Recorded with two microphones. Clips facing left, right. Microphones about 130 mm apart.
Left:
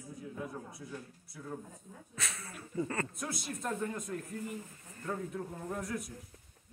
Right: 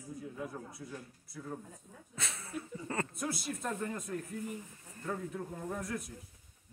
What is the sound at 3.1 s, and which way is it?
Speech, centre (ahead or behind).